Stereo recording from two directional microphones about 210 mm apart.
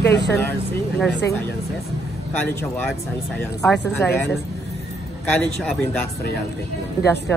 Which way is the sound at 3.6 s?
10° left (ahead or behind).